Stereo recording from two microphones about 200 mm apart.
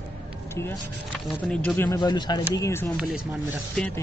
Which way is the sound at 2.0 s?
20° left (ahead or behind).